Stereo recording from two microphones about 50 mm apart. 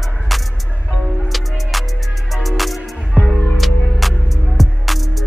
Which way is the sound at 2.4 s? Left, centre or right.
Centre.